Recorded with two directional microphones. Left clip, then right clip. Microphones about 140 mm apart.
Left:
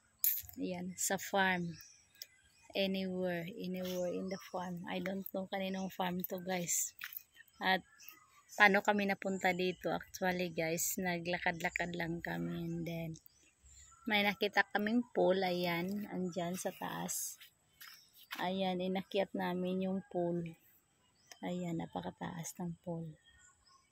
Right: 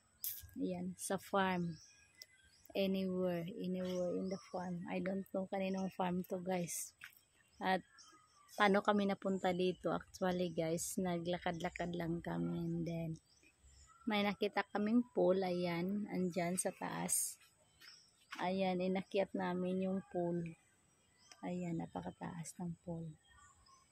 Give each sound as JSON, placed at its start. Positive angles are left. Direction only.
{"t": 0.2, "sound": "speech", "side_deg": -5}
{"t": 2.2, "sound": "a sound", "side_deg": -15}
{"t": 2.7, "sound": "speech", "side_deg": -15}
{"t": 18.4, "sound": "speech", "side_deg": 0}
{"t": 21.3, "sound": "speech", "side_deg": 20}